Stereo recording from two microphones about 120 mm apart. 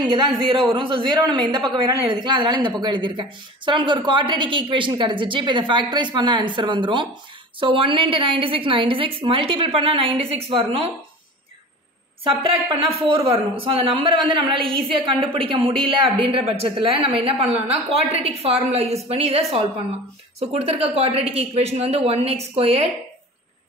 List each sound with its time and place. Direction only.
0.4 s speech: 40° right (ahead or behind)
12.3 s speech: 50° right (ahead or behind)